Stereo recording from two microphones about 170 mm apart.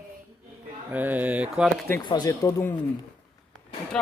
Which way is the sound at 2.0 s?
25° left (ahead or behind).